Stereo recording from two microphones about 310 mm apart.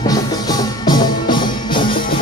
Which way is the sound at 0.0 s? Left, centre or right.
Centre.